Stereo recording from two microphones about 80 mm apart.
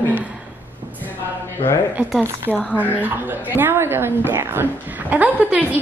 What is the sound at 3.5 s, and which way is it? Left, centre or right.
A woman's voice, right.